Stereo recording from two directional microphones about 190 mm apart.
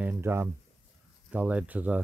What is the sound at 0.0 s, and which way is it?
Speech, 10° right (ahead or behind).